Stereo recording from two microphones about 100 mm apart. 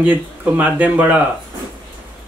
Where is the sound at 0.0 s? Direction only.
15° right (ahead or behind).